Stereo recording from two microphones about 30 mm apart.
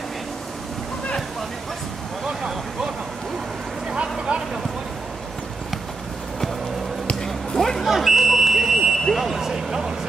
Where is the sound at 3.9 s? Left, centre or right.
Right.